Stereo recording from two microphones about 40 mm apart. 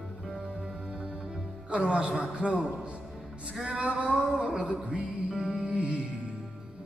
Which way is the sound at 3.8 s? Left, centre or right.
Right.